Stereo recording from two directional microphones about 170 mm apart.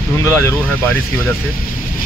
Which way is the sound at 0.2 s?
15° left (ahead or behind).